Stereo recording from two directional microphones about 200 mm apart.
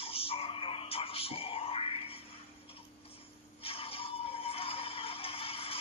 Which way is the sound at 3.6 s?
30° left (ahead or behind).